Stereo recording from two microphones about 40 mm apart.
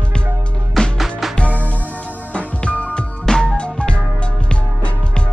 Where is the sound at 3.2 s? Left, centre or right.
Centre.